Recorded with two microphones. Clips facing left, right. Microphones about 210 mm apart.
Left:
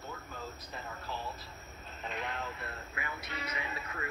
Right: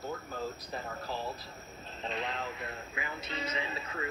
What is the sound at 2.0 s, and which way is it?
A man's voice, 25° right (ahead or behind).